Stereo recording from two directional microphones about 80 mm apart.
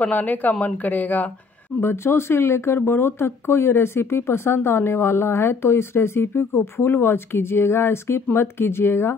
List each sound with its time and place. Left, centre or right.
0.0 s speech: centre
1.8 s speech: left